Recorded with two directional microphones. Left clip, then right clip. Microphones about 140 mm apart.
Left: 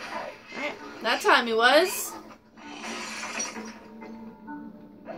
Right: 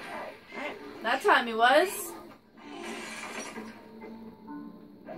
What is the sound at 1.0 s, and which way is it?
Speech, 75° left (ahead or behind).